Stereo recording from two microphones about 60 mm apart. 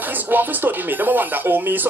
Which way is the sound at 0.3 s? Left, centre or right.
Right.